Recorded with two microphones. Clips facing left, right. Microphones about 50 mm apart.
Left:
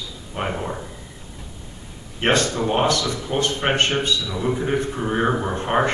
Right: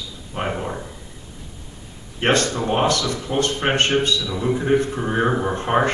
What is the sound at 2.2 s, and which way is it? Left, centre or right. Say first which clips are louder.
Speech: right 1 dB; left.